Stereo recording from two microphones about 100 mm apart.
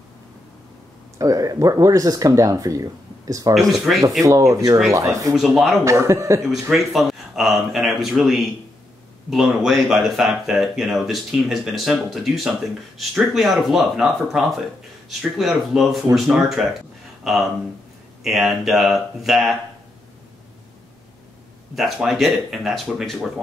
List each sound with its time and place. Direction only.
1.1 s speech: 35° right (ahead or behind)
3.5 s speech: centre (ahead or behind)
4.2 s speech: 30° right (ahead or behind)
5.3 s speech: 5° right (ahead or behind)
5.9 s speech: 30° right (ahead or behind)
6.7 s speech: centre (ahead or behind)
21.7 s speech: 5° right (ahead or behind)